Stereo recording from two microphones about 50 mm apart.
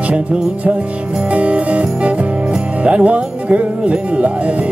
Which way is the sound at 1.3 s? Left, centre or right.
Right.